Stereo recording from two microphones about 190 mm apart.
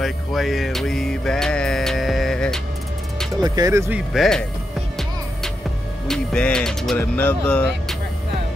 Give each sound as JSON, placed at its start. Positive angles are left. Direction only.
{"t": 0.0, "sound": "music", "side_deg": 0}
{"t": 3.4, "sound": "speech", "side_deg": -20}
{"t": 4.1, "sound": "speech", "side_deg": 0}
{"t": 6.0, "sound": "speech", "side_deg": 5}